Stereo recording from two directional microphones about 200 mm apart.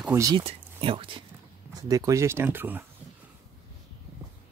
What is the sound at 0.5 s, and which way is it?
Speech, 25° right (ahead or behind).